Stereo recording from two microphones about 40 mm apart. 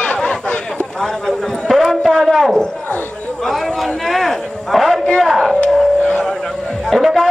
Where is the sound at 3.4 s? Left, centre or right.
Centre.